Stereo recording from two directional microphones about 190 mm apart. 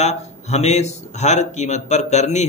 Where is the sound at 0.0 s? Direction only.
35° left (ahead or behind).